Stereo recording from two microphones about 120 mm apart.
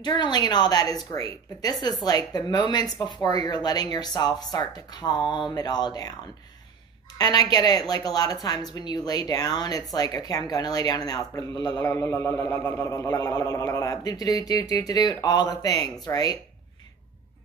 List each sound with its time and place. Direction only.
0.0 s a woman's voice: 35° left (ahead or behind)
7.2 s a woman's voice: 35° left (ahead or behind)